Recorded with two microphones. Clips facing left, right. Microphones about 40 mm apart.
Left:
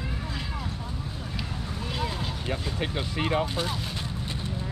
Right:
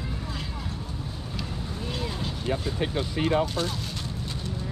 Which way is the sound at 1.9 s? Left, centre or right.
Centre.